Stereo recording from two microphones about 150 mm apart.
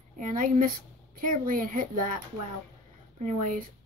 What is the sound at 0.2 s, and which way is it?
A woman's voice, 65° right (ahead or behind).